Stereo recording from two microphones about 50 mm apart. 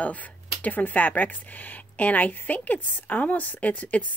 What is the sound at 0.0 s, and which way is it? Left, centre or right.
Speech, left.